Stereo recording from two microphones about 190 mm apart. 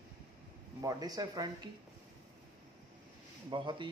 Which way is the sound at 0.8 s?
20° right (ahead or behind).